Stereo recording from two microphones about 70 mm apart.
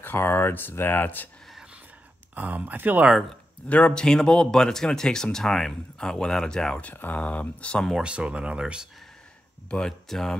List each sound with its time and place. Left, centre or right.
0.0 s speech: left
2.3 s speech: right
3.6 s speech: centre
6.8 s speech: left
8.0 s speech: centre
9.7 s speech: centre